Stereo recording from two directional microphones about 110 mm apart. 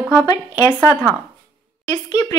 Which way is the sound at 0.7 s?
20° left (ahead or behind).